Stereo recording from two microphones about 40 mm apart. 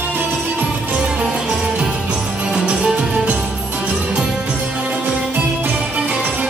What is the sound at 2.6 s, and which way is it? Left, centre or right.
Music, right.